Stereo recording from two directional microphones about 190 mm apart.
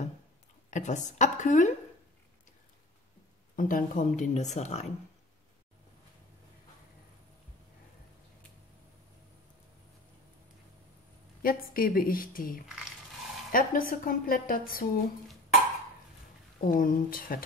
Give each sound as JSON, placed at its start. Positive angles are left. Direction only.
{"t": 0.7, "sound": "speech", "side_deg": 40}
{"t": 3.5, "sound": "speech", "side_deg": 45}
{"t": 11.4, "sound": "a woman's voice", "side_deg": 50}
{"t": 16.6, "sound": "a woman's voice", "side_deg": 45}